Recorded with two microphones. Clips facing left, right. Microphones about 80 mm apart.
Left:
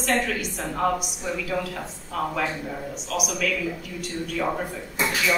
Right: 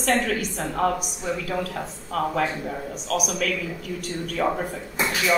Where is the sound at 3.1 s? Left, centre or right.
Right.